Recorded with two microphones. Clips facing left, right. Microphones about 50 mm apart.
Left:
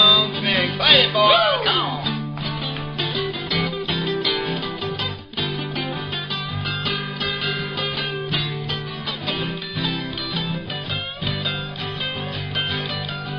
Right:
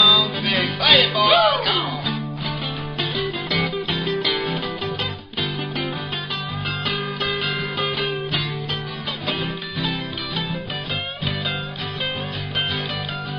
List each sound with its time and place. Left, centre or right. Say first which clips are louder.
0.0 s music: even; centre
9.3 s music: even; centre